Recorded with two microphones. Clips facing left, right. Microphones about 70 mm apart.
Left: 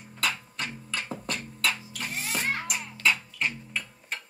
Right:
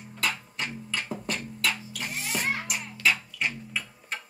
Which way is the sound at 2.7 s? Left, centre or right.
Centre.